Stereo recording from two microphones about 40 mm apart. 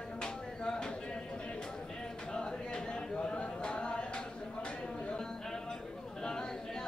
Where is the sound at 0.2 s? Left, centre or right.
Centre.